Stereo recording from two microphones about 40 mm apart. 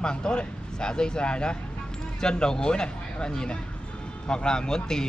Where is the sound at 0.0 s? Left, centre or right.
Left.